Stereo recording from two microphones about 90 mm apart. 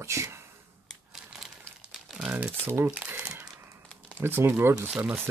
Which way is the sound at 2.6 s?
25° right (ahead or behind).